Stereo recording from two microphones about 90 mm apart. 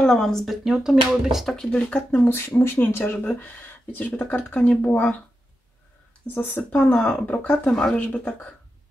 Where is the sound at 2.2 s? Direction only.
25° left (ahead or behind).